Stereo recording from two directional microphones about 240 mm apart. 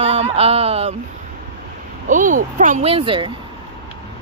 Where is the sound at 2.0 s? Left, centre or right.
Right.